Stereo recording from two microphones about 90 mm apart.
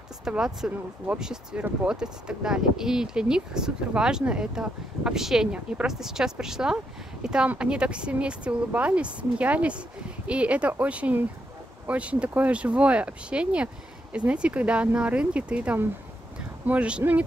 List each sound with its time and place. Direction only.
0.2 s speech: 5° right (ahead or behind)